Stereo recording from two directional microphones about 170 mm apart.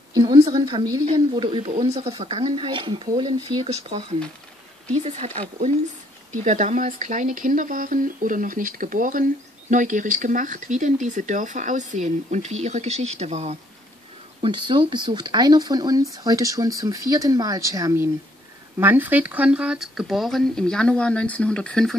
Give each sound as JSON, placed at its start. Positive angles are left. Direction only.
{"t": 0.1, "sound": "speech", "side_deg": -25}
{"t": 5.0, "sound": "speech", "side_deg": -40}
{"t": 14.4, "sound": "speech", "side_deg": -30}